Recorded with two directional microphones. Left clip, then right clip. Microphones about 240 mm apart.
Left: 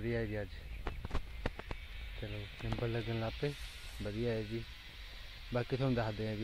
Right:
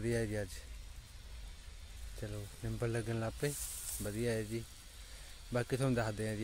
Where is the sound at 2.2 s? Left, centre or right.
Centre.